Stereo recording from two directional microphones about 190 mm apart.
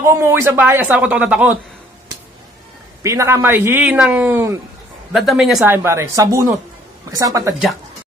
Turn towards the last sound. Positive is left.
turn(degrees=-20)  # may be behind; listen again after turning